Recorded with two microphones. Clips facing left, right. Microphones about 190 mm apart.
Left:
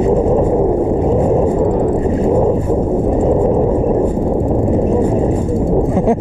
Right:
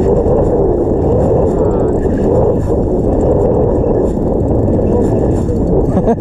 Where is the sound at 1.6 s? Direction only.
10° left (ahead or behind).